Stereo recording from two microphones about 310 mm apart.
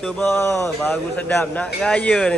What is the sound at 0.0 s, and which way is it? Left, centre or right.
A man's voice, centre.